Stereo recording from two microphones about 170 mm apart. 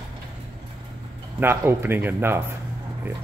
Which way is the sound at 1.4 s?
15° right (ahead or behind).